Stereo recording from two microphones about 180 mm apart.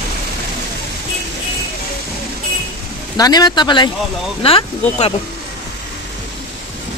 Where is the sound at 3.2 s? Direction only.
20° left (ahead or behind).